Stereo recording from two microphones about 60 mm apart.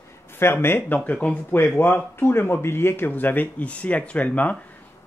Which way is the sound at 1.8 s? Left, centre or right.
Left.